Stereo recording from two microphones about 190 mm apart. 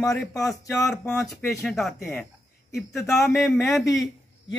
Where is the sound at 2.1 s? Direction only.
15° left (ahead or behind).